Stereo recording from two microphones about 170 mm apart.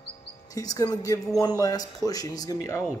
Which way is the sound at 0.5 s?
20° left (ahead or behind).